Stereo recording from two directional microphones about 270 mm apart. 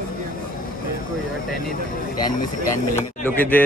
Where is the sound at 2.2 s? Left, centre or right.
Centre.